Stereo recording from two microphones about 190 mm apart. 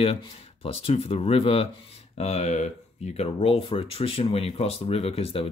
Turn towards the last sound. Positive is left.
turn(degrees=30)  # may be behind; listen again after turning